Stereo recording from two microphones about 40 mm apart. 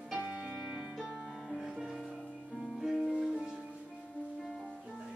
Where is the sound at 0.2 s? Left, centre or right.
Right; by 4.6 s centre.